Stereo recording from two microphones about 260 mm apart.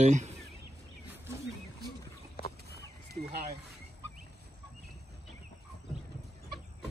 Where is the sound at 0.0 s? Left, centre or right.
Right.